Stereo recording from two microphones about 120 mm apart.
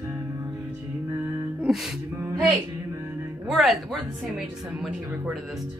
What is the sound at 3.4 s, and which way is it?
Speech, centre (ahead or behind).